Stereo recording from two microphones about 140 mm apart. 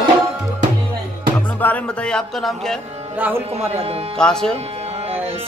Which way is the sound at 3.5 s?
45° right (ahead or behind).